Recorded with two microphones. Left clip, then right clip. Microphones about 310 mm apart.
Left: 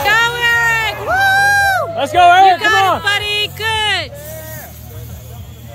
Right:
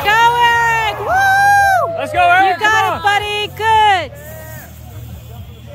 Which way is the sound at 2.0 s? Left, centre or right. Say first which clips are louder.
Left 7 dB; left.